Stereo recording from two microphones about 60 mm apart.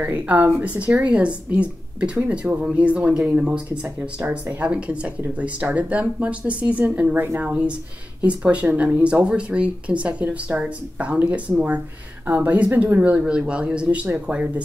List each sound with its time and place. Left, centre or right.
0.0 s speech: right